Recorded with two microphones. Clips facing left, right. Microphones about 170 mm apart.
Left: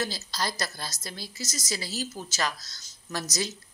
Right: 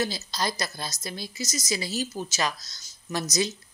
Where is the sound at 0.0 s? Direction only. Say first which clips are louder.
Right 3 dB; 15° right (ahead or behind).